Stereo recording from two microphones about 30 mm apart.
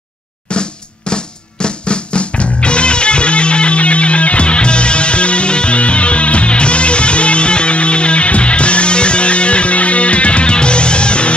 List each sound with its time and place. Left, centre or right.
0.5 s drum: left